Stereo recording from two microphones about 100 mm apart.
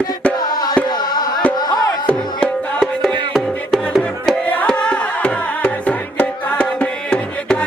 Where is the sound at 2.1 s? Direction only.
15° left (ahead or behind).